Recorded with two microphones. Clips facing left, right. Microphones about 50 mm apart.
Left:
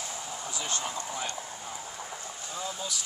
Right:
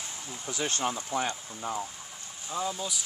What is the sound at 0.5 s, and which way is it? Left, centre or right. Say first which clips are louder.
Speech: right 6 dB; right.